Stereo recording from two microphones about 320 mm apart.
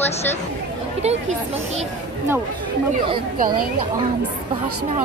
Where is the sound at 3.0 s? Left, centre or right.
Centre.